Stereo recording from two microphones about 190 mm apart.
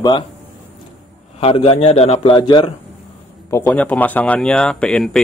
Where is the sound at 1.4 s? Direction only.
30° left (ahead or behind).